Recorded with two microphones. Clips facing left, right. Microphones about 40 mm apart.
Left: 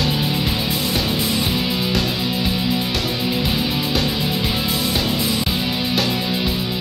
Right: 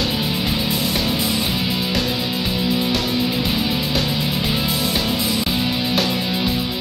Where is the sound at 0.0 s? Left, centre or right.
Centre.